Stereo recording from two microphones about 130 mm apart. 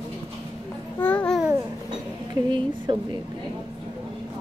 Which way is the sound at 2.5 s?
40° right (ahead or behind).